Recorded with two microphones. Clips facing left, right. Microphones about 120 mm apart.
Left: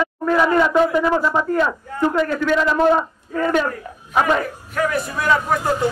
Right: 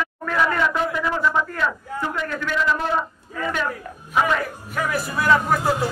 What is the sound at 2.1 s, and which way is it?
Speech, 45° left (ahead or behind).